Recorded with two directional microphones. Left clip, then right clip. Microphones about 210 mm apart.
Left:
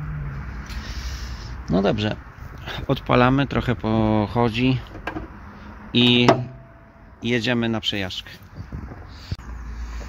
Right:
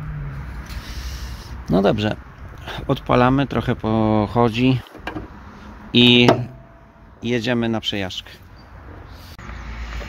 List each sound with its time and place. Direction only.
0.8 s a sound: 15° right (ahead or behind)
2.6 s speech: 10° right (ahead or behind)
5.9 s speech: 30° right (ahead or behind)
7.2 s speech: centre (ahead or behind)